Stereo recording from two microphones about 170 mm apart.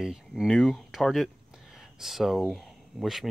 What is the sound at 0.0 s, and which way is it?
Speech, centre (ahead or behind).